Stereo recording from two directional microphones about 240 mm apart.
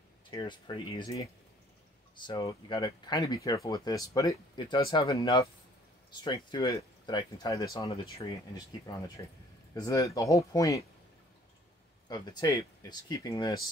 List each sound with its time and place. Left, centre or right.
0.3 s speech: centre
12.1 s speech: centre